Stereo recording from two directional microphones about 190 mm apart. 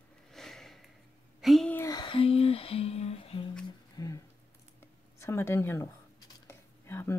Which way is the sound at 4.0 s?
20° left (ahead or behind).